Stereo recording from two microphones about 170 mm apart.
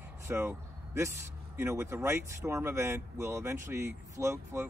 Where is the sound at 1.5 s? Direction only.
15° right (ahead or behind).